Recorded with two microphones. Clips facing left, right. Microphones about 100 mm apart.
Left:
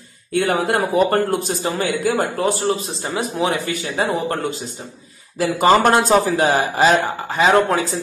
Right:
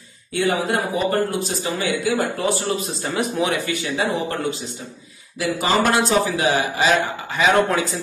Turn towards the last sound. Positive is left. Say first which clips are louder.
# left 2 dB
turn(degrees=35)  # may be behind; listen again after turning